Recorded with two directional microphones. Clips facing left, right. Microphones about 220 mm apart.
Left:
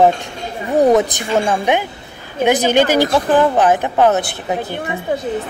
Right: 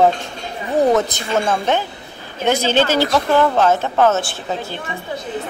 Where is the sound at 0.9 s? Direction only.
15° left (ahead or behind).